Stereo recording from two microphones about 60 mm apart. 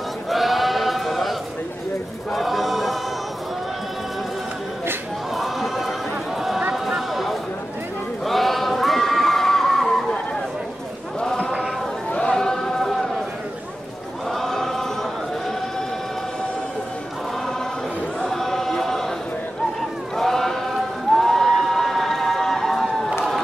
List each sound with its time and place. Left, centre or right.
0.3 s sheep: centre
2.3 s choir: centre
5.3 s choir: centre
6.7 s a sound: centre
11.1 s chant: centre
12.1 s a sound: centre
14.3 s choir: centre
18.2 s choir: centre
20.2 s a sound: centre